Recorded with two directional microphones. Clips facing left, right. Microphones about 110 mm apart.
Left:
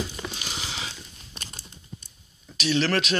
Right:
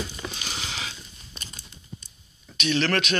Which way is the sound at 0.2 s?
5° left (ahead or behind).